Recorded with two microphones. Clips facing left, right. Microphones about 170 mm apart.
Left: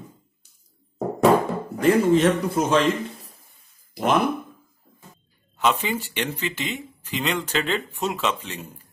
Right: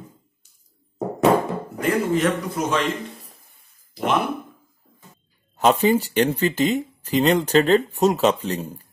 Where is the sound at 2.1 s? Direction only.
30° left (ahead or behind).